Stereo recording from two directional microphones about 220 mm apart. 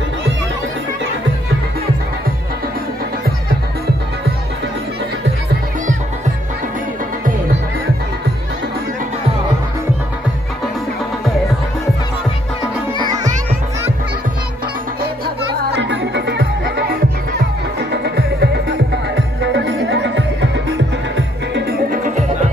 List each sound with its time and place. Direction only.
15.7 s music: 55° right (ahead or behind)
17.9 s music: 50° right (ahead or behind)
21.5 s music: 45° right (ahead or behind)